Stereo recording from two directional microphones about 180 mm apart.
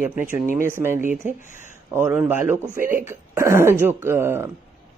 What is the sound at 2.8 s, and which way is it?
Speech, 50° right (ahead or behind).